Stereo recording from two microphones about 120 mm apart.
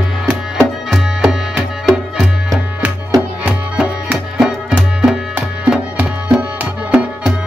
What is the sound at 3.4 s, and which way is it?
Tabla, 15° right (ahead or behind).